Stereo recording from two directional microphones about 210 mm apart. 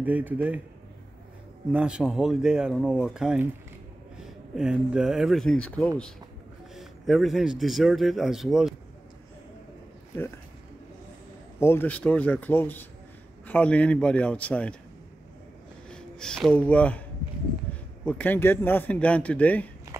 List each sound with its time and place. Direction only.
0.0 s speech: 10° right (ahead or behind)
1.7 s speech: 5° right (ahead or behind)
11.6 s speech: 10° left (ahead or behind)
15.9 s speech: 5° left (ahead or behind)
17.7 s a sound: 10° left (ahead or behind)
18.0 s speech: 10° left (ahead or behind)